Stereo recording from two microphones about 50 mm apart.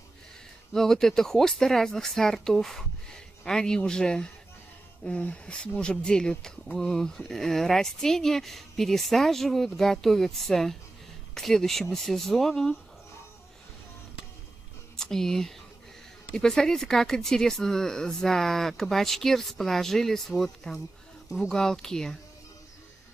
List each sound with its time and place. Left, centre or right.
0.7 s speech: centre
15.0 s speech: centre